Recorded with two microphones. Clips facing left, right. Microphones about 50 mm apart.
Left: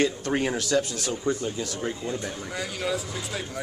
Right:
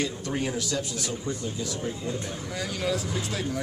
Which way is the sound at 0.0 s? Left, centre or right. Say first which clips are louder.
Left 5 dB; left.